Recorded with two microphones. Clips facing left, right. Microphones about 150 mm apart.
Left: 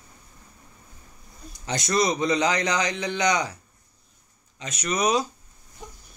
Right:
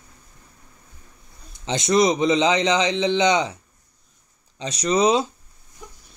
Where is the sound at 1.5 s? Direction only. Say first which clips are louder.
Right 6 dB; 20° right (ahead or behind).